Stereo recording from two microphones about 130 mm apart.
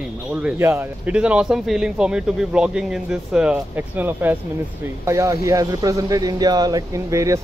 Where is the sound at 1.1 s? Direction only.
10° right (ahead or behind).